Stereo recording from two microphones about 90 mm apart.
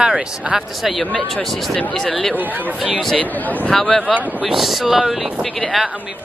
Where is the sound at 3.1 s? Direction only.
20° left (ahead or behind).